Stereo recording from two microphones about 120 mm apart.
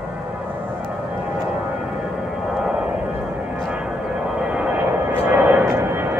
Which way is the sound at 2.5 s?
5° right (ahead or behind).